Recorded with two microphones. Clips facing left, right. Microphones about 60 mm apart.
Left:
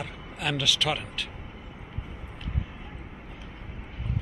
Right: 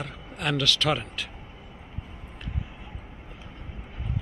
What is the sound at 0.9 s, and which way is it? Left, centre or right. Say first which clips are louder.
Speech: right 3 dB; centre.